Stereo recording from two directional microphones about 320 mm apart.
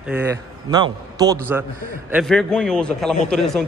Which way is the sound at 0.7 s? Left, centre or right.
Centre.